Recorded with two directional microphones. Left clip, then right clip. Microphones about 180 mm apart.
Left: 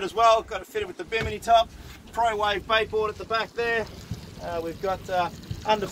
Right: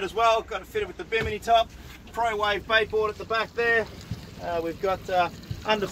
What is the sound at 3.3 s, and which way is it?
Speech, 30° right (ahead or behind).